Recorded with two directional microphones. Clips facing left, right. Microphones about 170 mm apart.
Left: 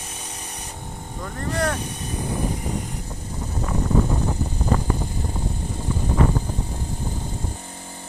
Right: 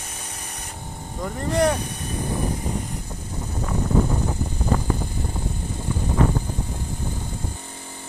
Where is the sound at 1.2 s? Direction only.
15° right (ahead or behind).